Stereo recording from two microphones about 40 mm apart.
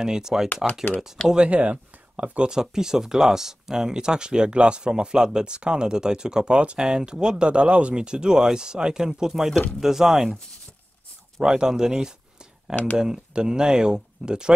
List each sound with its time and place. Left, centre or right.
0.0 s speech: centre
1.2 s speech: centre
1.5 s speech: right
2.5 s speech: centre
11.4 s speech: centre